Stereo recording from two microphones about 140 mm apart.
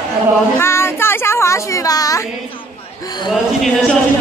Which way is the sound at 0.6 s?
20° left (ahead or behind).